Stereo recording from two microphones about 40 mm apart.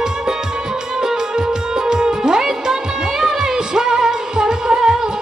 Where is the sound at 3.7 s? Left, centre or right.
Centre.